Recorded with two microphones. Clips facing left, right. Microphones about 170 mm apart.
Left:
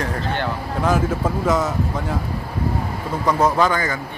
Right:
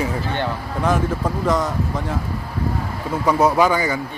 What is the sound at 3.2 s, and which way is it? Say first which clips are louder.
Speech: right 2 dB; 10° right (ahead or behind).